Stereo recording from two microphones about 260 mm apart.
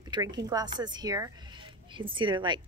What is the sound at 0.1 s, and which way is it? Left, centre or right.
A woman's voice, centre.